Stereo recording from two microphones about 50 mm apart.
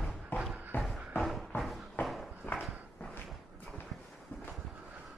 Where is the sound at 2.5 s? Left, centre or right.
Left.